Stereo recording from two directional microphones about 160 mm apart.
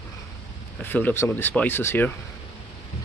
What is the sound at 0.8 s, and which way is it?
Speech, 10° left (ahead or behind).